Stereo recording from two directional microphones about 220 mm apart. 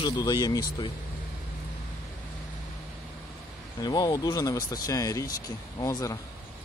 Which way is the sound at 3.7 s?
20° left (ahead or behind).